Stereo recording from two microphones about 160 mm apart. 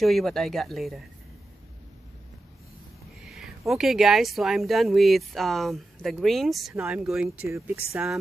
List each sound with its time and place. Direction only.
0.0 s speech: centre (ahead or behind)
3.3 s speech: centre (ahead or behind)
7.2 s speech: 15° right (ahead or behind)